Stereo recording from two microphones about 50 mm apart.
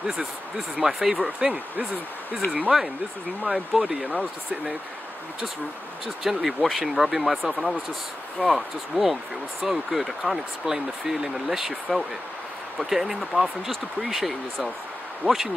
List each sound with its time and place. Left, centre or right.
0.7 s speech: centre
2.4 s speech: left
3.4 s speech: centre
6.2 s speech: centre